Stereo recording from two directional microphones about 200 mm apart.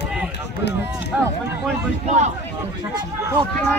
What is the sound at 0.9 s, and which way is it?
Speech, 15° right (ahead or behind).